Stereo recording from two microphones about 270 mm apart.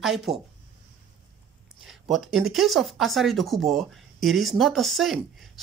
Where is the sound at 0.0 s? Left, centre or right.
Centre.